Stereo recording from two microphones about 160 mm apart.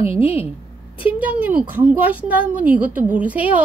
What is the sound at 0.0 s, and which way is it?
Speech, 35° left (ahead or behind).